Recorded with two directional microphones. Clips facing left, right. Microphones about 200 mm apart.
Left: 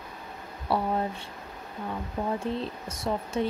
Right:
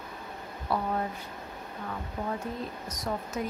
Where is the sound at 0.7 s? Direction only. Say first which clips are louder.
Left 3 dB; 30° left (ahead or behind).